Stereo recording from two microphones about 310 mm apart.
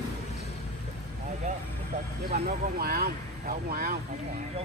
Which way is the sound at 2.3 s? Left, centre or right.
Right.